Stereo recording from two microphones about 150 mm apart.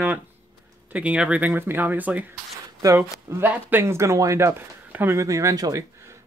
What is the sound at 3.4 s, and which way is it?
Speech, 15° right (ahead or behind).